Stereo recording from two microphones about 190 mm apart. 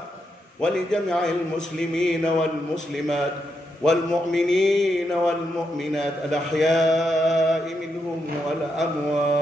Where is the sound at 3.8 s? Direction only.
Centre (ahead or behind).